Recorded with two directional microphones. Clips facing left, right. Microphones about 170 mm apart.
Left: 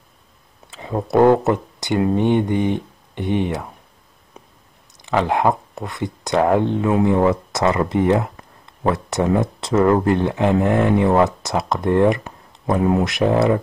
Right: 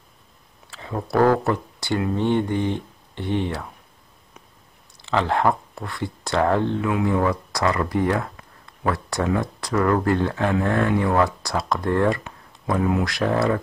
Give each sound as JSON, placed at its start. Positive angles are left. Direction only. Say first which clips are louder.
{"t": 0.7, "sound": "speech", "louder": "left 5 dB", "side_deg": 20}
{"t": 5.0, "sound": "speech", "louder": "left 3 dB", "side_deg": 15}
{"t": 6.9, "sound": "speech", "louder": "left 7 dB", "side_deg": 30}